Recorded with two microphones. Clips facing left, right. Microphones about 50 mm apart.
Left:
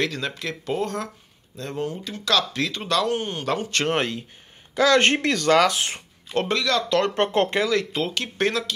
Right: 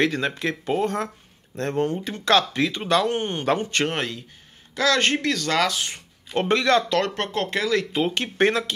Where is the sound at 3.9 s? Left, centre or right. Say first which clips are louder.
Left 3 dB; centre.